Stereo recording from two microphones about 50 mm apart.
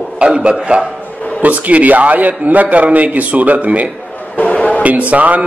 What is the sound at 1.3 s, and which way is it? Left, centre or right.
A man's voice, right.